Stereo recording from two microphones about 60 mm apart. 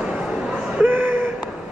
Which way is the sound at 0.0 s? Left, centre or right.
Centre.